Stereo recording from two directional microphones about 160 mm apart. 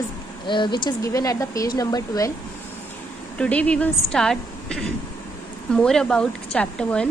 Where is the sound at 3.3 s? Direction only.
5° left (ahead or behind).